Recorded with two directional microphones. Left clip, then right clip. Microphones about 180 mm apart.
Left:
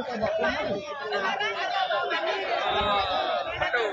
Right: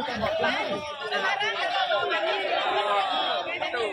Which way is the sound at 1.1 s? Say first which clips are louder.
Right 2 dB; 10° left (ahead or behind).